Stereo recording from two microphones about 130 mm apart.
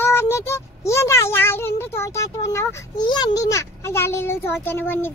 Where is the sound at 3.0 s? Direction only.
35° left (ahead or behind).